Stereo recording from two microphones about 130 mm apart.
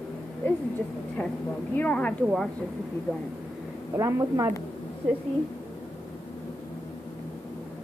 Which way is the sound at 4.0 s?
25° right (ahead or behind).